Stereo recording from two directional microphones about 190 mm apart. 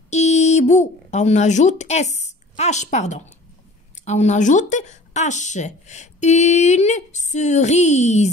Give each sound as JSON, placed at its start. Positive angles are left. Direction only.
{"t": 0.1, "sound": "speech", "side_deg": 35}